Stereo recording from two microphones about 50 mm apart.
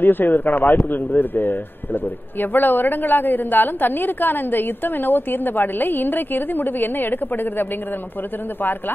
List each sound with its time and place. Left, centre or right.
0.0 s a woman's voice: left